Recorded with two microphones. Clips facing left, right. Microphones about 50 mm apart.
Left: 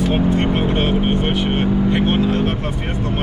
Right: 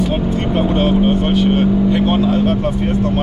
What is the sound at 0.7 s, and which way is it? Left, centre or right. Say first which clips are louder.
Speech: right 4 dB; centre.